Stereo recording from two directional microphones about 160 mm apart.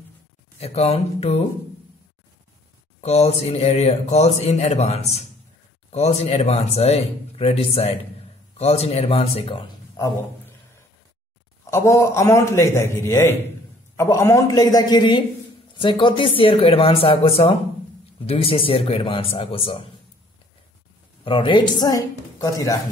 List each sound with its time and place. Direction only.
0.6 s speech: 40° left (ahead or behind)
3.0 s speech: 40° left (ahead or behind)
11.7 s a man's voice: 20° left (ahead or behind); by 19.9 s 35° left (ahead or behind)
21.2 s speech: 35° left (ahead or behind)